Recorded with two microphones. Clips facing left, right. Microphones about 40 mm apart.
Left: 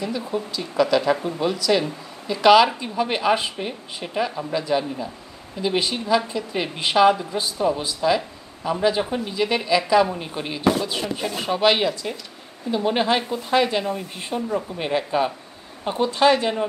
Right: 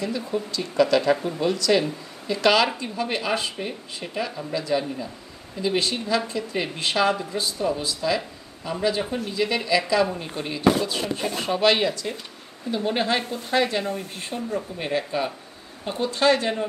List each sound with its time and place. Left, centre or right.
0.0 s speech: centre
11.0 s speech: centre
13.3 s speech: left
14.8 s speech: centre